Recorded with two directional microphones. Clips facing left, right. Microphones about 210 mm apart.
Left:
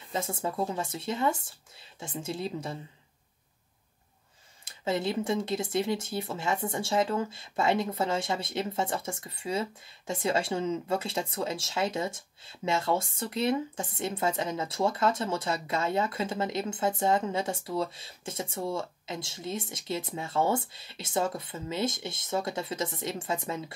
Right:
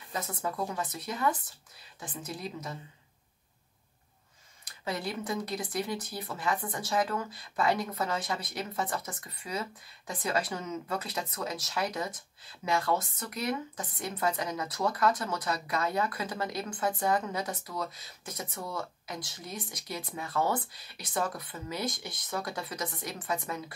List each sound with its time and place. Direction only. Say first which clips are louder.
0.1 s speech: left 3 dB; 25° left (ahead or behind)
4.6 s speech: left 6 dB; 25° left (ahead or behind)